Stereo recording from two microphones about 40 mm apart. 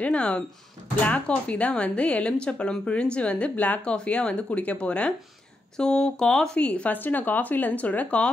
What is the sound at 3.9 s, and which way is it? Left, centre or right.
Speech, left.